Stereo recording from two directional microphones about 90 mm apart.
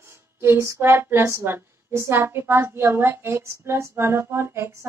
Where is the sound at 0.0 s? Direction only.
30° right (ahead or behind).